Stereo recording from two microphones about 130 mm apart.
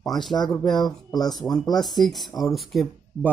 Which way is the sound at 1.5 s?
30° left (ahead or behind).